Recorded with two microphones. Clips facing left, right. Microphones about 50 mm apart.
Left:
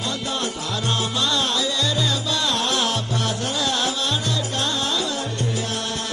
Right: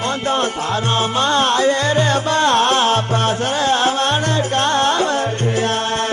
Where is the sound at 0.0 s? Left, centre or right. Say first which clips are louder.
Right 8 dB; right.